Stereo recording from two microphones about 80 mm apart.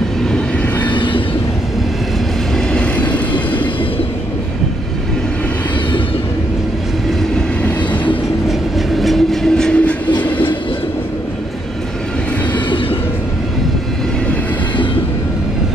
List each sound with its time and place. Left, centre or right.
0.8 s train: left
2.5 s vehicle: centre
7.6 s train: centre
8.5 s train: centre
12.5 s train: left